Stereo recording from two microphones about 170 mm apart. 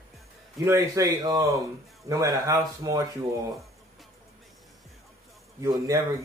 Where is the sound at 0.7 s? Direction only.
15° right (ahead or behind).